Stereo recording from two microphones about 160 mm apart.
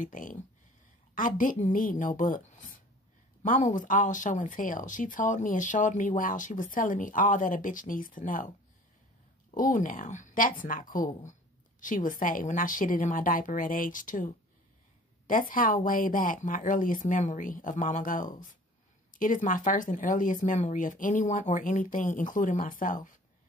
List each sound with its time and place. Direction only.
0.0 s speech: 55° left (ahead or behind)
9.5 s speech: 55° left (ahead or behind)